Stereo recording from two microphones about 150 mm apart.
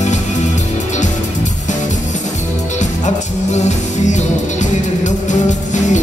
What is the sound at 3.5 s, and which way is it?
Music, 50° left (ahead or behind).